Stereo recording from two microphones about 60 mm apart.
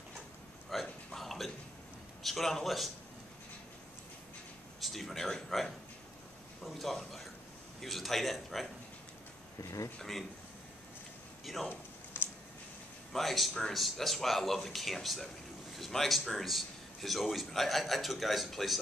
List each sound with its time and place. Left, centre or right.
0.7 s a sound: centre
1.1 s burping: centre
2.2 s a man's voice: centre
4.7 s a man's voice: centre
9.6 s speech: left
11.4 s a man's voice: centre
11.7 s a sound: left
13.1 s a man's voice: centre